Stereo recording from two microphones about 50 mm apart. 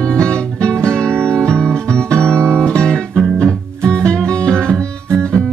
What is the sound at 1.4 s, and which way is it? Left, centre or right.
Music, right.